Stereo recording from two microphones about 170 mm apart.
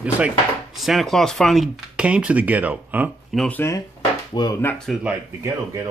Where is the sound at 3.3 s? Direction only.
10° left (ahead or behind).